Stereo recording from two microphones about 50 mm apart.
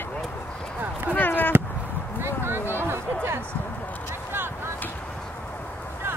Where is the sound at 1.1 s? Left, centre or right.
Left.